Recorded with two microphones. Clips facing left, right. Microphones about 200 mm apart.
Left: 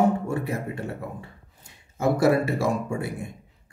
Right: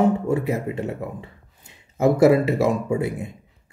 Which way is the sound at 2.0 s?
20° right (ahead or behind).